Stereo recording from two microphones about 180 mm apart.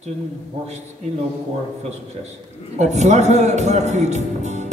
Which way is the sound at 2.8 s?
40° right (ahead or behind).